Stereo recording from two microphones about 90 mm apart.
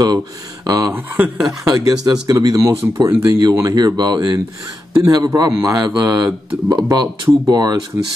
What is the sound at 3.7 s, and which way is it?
Speech, 50° right (ahead or behind).